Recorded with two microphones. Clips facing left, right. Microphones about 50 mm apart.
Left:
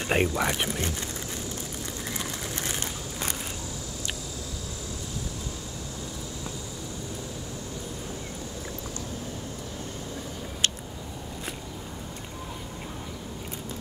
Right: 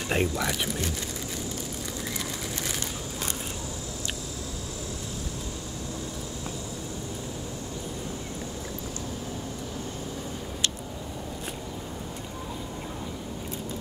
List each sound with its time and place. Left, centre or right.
0.1 s speech: left